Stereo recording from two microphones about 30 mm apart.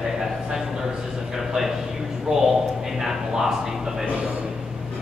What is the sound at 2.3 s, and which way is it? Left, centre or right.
Speech, right.